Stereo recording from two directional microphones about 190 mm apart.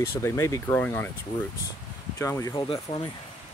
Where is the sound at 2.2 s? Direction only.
15° left (ahead or behind).